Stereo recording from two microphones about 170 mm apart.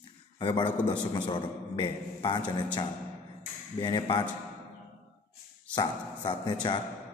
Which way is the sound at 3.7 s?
25° left (ahead or behind).